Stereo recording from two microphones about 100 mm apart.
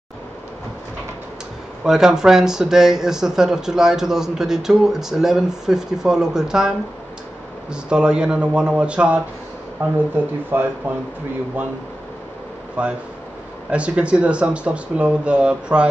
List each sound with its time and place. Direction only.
1.9 s speech: 5° right (ahead or behind)
7.7 s speech: 10° right (ahead or behind)
12.8 s speech: 10° right (ahead or behind)